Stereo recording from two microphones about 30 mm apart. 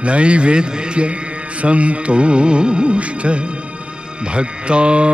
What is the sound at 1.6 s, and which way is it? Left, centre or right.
Music, right.